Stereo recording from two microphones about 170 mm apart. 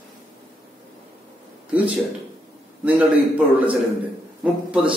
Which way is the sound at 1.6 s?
10° right (ahead or behind).